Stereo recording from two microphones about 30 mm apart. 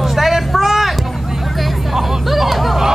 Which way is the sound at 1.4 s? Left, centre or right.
Centre.